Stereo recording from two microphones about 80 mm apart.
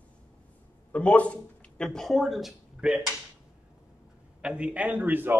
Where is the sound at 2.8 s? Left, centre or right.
Centre.